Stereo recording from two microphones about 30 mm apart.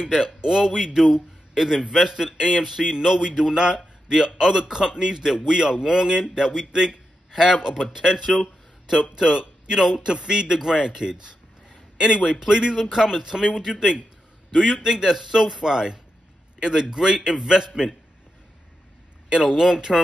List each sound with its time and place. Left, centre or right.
0.2 s a man's voice: right
1.0 s a sound: right
2.0 s a man's voice: centre
9.4 s speech: right
10.1 s a man's voice: right
19.2 s speech: right
19.6 s speech: centre